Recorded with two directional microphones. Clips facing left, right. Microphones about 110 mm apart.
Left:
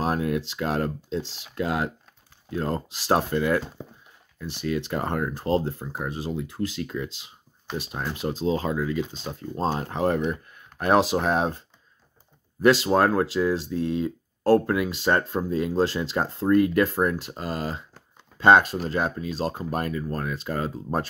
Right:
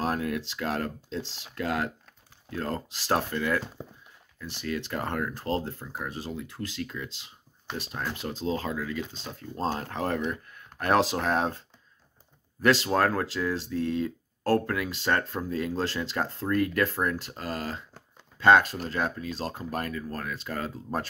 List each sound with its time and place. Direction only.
0.0 s speech: 20° left (ahead or behind)
12.6 s speech: 15° left (ahead or behind)